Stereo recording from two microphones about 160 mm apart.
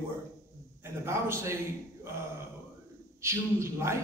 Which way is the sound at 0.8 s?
15° right (ahead or behind).